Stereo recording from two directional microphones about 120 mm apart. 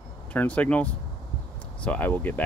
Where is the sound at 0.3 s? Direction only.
10° left (ahead or behind).